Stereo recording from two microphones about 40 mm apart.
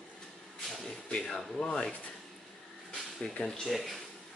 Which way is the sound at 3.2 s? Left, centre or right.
Left.